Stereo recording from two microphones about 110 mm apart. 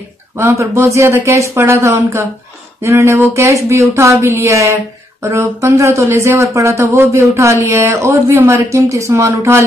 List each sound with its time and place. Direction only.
0.4 s speech: 25° right (ahead or behind)